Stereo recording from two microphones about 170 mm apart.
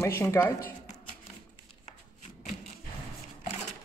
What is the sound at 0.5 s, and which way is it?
Speech, 55° left (ahead or behind).